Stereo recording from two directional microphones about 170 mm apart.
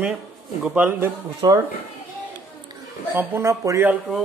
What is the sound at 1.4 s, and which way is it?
Speech, 25° right (ahead or behind).